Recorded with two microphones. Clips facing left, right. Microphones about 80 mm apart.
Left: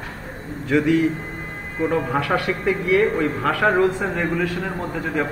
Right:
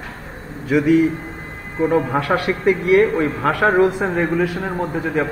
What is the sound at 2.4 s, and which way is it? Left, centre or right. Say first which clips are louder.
Speech: right 4 dB; right.